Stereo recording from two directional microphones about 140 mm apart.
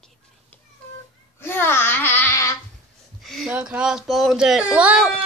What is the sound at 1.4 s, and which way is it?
Babbling, 15° left (ahead or behind).